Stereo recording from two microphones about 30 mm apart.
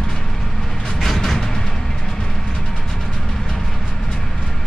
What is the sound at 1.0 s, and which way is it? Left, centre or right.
Vehicle, centre.